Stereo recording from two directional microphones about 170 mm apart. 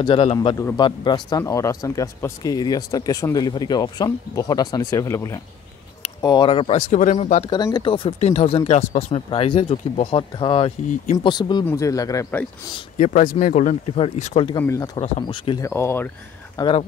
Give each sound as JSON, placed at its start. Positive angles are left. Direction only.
{"t": 0.0, "sound": "speech", "side_deg": 30}
{"t": 6.9, "sound": "speech", "side_deg": 45}
{"t": 7.4, "sound": "speech", "side_deg": 25}
{"t": 12.9, "sound": "speech", "side_deg": 50}
{"t": 14.6, "sound": "speech", "side_deg": 15}
{"t": 15.0, "sound": "speech", "side_deg": 30}
{"t": 15.6, "sound": "speech", "side_deg": 15}
{"t": 16.5, "sound": "speech", "side_deg": 30}